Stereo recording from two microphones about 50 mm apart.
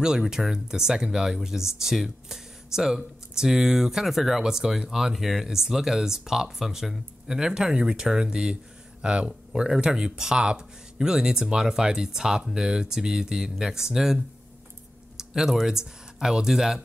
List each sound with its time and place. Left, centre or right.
0.0 s speech: centre